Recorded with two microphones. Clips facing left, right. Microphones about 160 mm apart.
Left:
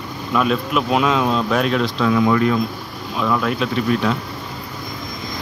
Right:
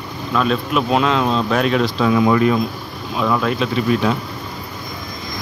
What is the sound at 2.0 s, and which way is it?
Speech, 15° right (ahead or behind).